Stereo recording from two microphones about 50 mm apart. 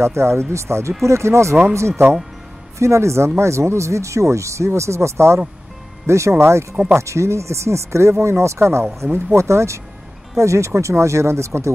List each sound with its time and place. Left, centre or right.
0.0 s speech: right
2.8 s speech: right
10.3 s speech: right